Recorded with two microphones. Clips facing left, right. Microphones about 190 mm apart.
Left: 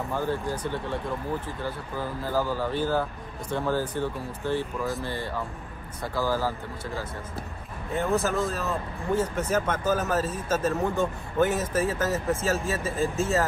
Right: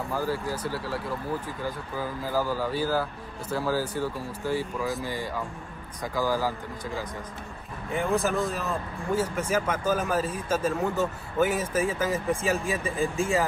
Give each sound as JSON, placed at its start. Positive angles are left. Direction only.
{"t": 0.1, "sound": "speech", "side_deg": -5}
{"t": 5.0, "sound": "speech", "side_deg": -10}
{"t": 7.9, "sound": "speech", "side_deg": -15}